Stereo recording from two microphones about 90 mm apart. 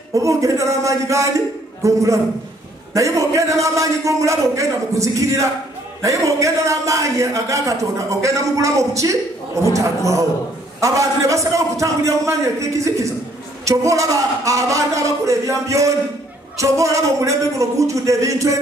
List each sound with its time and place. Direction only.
0.1 s a man's voice: 35° right (ahead or behind)